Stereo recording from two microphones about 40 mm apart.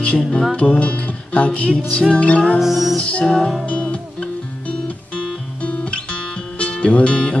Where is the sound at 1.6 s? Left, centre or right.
Centre.